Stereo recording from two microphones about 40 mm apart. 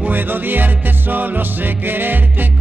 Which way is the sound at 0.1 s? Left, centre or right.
Right.